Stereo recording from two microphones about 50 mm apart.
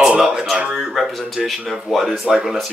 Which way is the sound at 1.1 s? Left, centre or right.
Centre.